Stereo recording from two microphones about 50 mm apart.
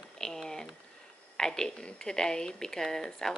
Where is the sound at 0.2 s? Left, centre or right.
Centre.